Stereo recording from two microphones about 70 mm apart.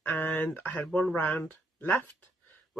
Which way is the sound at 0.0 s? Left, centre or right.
Left.